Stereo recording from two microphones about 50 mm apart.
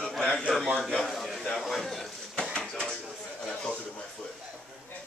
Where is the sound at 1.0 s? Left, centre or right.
Centre.